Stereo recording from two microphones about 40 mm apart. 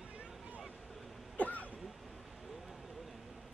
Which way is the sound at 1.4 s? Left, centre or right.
Left.